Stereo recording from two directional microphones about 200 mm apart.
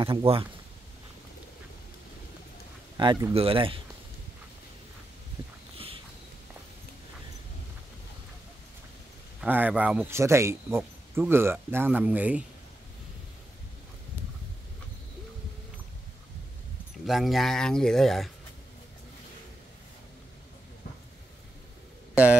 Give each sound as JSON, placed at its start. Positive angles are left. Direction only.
{"t": 0.0, "sound": "speech", "side_deg": -25}
{"t": 3.0, "sound": "speech", "side_deg": -20}
{"t": 9.4, "sound": "speech", "side_deg": -10}
{"t": 17.0, "sound": "speech", "side_deg": 0}
{"t": 22.1, "sound": "speech", "side_deg": -5}